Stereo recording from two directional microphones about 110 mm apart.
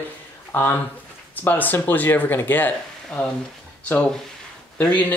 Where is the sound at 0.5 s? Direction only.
20° left (ahead or behind).